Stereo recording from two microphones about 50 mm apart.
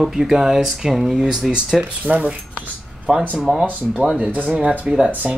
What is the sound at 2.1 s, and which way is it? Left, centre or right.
Speech, right.